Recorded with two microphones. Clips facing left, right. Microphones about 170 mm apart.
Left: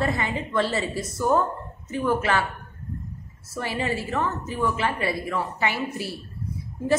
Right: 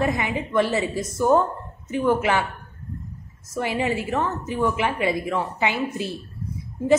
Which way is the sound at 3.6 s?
15° right (ahead or behind).